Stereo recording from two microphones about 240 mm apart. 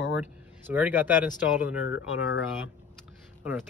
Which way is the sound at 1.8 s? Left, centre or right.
Left.